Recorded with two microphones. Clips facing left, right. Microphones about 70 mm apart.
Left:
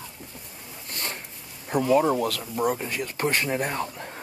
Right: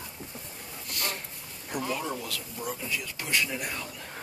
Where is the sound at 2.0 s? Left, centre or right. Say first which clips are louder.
Left 11 dB; left.